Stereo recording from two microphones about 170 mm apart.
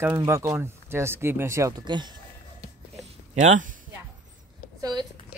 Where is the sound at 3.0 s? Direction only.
40° right (ahead or behind).